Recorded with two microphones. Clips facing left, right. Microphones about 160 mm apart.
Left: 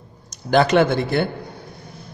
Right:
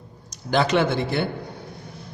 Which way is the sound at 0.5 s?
50° left (ahead or behind).